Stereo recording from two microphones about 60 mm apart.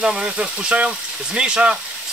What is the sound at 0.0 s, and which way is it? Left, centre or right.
Speech, centre.